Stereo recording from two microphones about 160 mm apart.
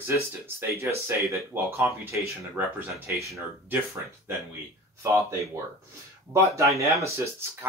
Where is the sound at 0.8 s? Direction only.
15° right (ahead or behind).